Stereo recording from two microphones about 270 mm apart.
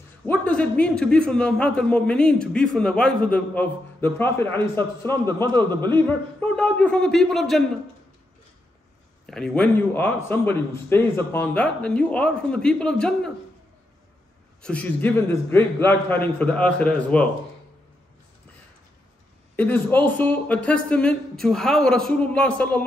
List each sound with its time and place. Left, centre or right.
0.2 s a man's voice: centre
5.5 s a man's voice: centre
6.0 s a man's voice: centre
9.2 s a man's voice: centre
14.6 s a man's voice: centre
19.5 s a man's voice: centre